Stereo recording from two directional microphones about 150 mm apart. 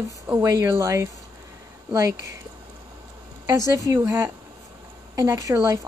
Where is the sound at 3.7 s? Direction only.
20° right (ahead or behind).